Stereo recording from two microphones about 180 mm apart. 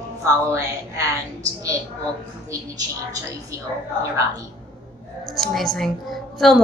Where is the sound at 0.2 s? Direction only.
15° right (ahead or behind).